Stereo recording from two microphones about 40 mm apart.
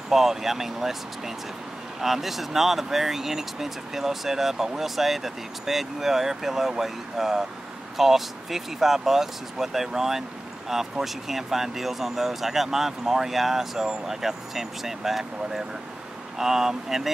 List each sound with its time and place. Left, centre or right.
0.1 s speech: centre